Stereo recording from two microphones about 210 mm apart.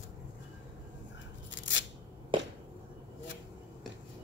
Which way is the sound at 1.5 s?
60° left (ahead or behind).